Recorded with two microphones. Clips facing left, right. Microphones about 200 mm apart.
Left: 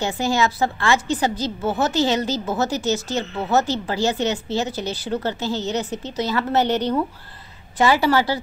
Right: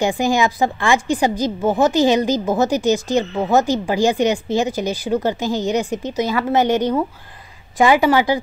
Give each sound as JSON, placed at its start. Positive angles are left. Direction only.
{"t": 0.0, "sound": "a woman's voice", "side_deg": -15}
{"t": 7.8, "sound": "a woman's voice", "side_deg": -15}